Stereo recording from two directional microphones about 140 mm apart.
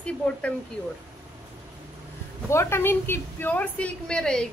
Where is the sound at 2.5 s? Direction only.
20° left (ahead or behind).